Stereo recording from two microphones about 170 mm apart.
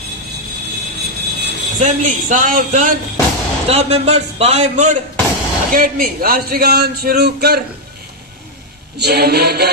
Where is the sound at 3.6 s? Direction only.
35° right (ahead or behind).